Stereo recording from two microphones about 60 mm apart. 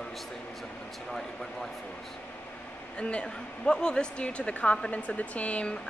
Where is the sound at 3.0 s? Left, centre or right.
Centre.